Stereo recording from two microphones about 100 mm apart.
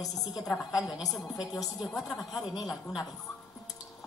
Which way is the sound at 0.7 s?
5° right (ahead or behind).